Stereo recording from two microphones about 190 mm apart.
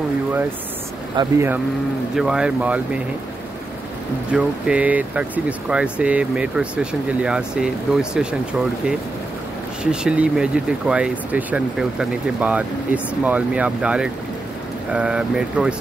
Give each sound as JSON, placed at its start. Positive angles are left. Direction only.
{"t": 1.2, "sound": "speech", "side_deg": -25}
{"t": 2.1, "sound": "speech", "side_deg": -5}
{"t": 4.3, "sound": "speech", "side_deg": -5}
{"t": 9.8, "sound": "speech", "side_deg": -5}